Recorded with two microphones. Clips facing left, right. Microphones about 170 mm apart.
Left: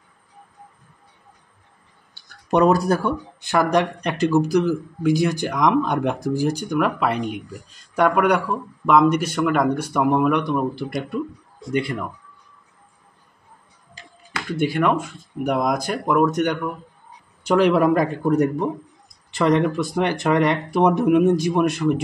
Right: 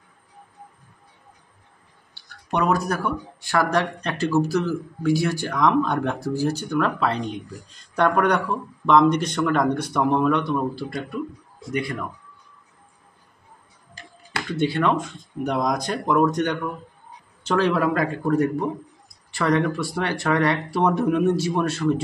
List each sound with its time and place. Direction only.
2.5 s speech: 35° left (ahead or behind)
14.6 s speech: 10° left (ahead or behind)